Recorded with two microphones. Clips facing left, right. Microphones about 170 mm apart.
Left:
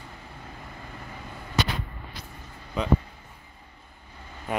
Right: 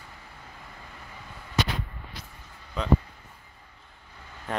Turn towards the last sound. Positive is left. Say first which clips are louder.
# left 2 dB
turn(degrees=10)  # may be behind; listen again after turning